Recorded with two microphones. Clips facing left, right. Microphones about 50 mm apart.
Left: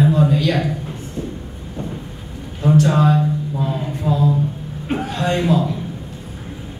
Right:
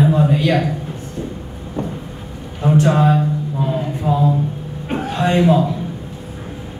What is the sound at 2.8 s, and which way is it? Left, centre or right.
Speech, centre.